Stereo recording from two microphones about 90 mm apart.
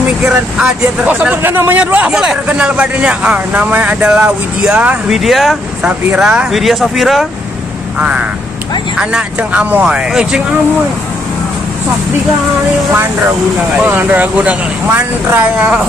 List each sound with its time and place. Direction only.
0.0 s speech: 10° right (ahead or behind)
1.4 s a man's voice: 25° right (ahead or behind)
5.1 s speech: centre (ahead or behind)
5.9 s speech: 15° right (ahead or behind)
8.0 s speech: 15° right (ahead or behind)
13.8 s speech: 20° right (ahead or behind)